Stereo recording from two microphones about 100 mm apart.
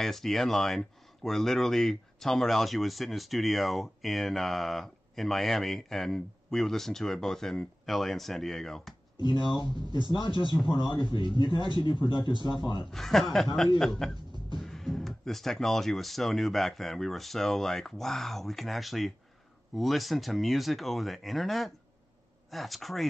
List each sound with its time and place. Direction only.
0.0 s speech: 5° left (ahead or behind)
9.2 s a man's voice: 55° left (ahead or behind)
12.9 s speech: centre (ahead or behind)